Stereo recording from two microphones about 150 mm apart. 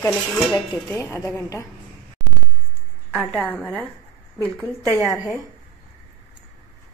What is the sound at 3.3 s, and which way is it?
Speech, 10° left (ahead or behind).